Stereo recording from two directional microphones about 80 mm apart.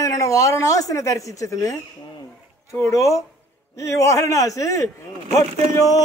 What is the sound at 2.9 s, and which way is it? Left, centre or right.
A man's voice, left.